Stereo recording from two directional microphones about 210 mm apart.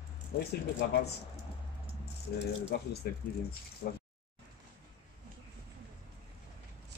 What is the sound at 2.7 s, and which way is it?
Speech, 50° left (ahead or behind).